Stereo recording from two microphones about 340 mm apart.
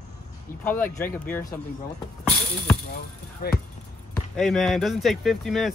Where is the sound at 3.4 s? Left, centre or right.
Left.